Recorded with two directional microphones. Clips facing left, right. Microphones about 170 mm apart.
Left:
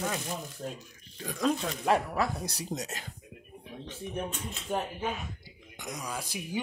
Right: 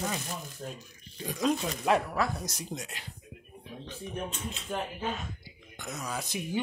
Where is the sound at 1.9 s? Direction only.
15° left (ahead or behind).